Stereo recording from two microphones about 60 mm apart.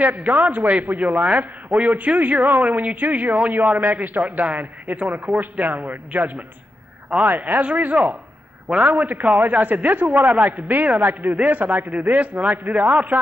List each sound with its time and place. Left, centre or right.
0.0 s a man's voice: right